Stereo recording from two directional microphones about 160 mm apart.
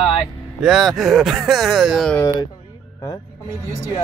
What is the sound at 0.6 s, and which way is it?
Speech, centre (ahead or behind).